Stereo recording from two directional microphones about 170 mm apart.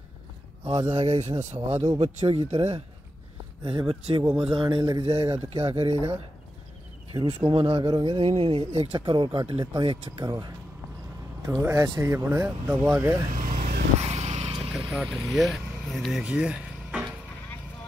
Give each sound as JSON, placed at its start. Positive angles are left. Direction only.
{"t": 0.7, "sound": "speech", "side_deg": -35}
{"t": 7.3, "sound": "speech", "side_deg": -35}
{"t": 13.4, "sound": "vehicle", "side_deg": -55}
{"t": 14.0, "sound": "vehicle", "side_deg": -40}
{"t": 14.9, "sound": "speech", "side_deg": 0}